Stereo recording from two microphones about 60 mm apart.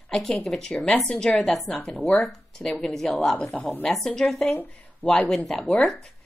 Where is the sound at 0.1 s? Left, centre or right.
Centre.